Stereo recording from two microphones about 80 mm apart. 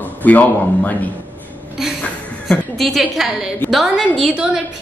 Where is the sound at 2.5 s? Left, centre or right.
Centre.